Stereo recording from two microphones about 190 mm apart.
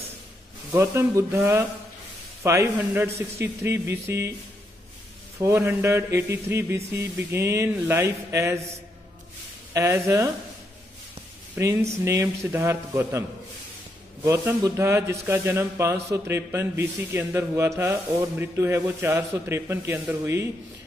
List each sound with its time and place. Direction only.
0.7 s speech: 15° right (ahead or behind)
5.4 s speech: 15° right (ahead or behind)
9.8 s speech: 15° right (ahead or behind)
11.5 s speech: 15° right (ahead or behind)
14.2 s speech: 15° right (ahead or behind)